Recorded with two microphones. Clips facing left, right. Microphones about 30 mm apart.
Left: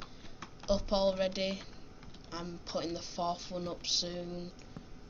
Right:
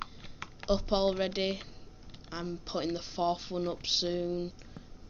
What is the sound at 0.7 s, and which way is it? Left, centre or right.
Speech, centre.